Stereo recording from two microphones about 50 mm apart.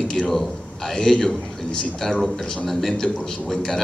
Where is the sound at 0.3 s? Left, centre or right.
Centre.